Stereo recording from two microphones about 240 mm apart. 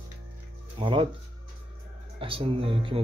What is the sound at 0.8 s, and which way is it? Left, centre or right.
Speech, right.